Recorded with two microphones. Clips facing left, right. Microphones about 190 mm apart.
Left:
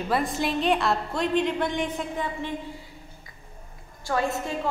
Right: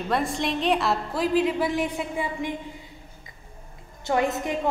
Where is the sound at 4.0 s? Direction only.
20° right (ahead or behind).